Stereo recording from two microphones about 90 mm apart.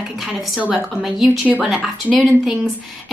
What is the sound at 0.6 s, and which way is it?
A woman's voice, 15° right (ahead or behind).